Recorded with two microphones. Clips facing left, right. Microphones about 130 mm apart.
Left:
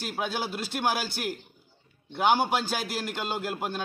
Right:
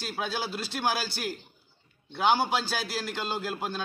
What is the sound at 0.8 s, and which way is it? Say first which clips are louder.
Speech: left 1 dB; 50° left (ahead or behind).